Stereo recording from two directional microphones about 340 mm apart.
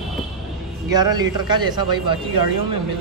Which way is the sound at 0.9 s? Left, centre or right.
Centre.